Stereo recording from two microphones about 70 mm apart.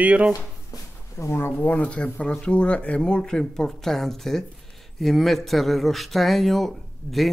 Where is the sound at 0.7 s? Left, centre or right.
Left.